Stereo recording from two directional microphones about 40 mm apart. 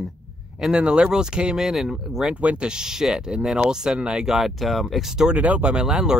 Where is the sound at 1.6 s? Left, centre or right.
Centre.